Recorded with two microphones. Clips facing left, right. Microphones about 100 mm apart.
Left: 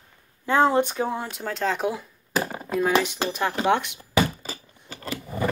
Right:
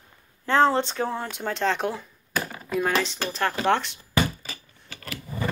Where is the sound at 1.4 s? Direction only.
Centre (ahead or behind).